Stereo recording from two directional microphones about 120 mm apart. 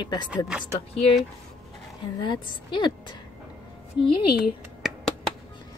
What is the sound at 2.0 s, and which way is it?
A woman's voice, 40° left (ahead or behind).